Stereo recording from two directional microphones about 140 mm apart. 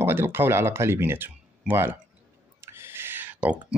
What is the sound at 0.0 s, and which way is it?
Speech, 15° right (ahead or behind).